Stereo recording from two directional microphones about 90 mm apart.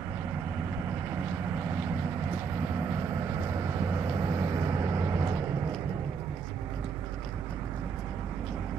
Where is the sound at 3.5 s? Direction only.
30° right (ahead or behind).